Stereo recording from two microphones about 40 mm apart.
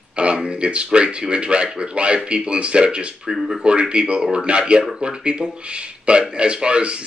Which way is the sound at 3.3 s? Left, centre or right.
Centre.